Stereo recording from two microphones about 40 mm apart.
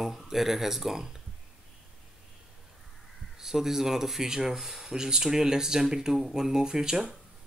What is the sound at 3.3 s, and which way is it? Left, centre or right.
Speech, centre.